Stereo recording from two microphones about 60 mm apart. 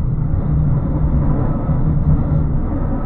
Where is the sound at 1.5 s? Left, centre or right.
Left.